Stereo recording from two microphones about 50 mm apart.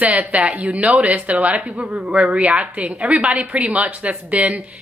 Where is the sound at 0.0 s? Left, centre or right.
Right.